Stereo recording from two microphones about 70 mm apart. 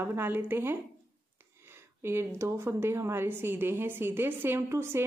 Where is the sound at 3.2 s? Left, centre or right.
Right.